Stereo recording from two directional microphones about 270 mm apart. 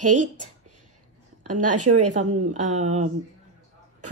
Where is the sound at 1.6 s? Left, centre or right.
Right.